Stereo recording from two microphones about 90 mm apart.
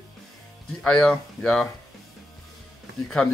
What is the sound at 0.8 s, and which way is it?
Speech, 10° left (ahead or behind).